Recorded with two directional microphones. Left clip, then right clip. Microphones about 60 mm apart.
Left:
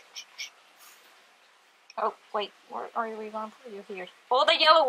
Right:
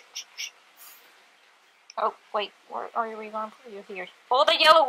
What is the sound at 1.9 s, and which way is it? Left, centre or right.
Speech, right.